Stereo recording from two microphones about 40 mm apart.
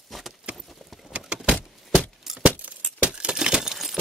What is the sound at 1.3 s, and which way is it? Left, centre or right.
Vehicle, right.